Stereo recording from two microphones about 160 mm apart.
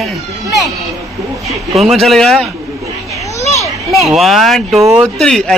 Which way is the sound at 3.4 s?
45° left (ahead or behind).